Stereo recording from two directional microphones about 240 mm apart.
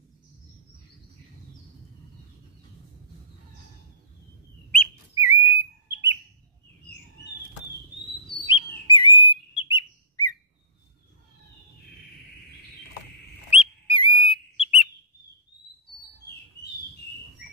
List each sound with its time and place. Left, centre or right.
5.2 s bird: centre
8.5 s bird: centre
13.5 s bird: left